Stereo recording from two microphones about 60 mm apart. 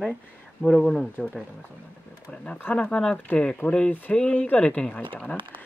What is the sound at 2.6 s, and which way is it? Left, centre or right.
Speech, left.